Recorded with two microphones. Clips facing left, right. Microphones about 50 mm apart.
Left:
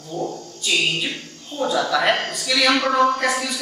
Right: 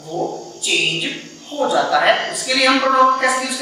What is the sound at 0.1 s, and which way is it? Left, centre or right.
Mantra, centre.